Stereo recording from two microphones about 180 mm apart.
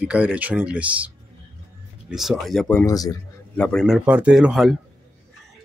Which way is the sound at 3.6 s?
5° left (ahead or behind).